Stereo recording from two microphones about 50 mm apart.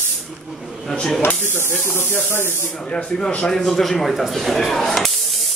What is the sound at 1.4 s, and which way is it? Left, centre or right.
Speech, left.